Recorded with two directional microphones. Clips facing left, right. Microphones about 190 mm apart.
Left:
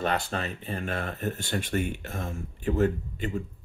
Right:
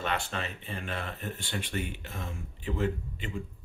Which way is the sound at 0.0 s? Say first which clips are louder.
Left 5 dB; 40° left (ahead or behind).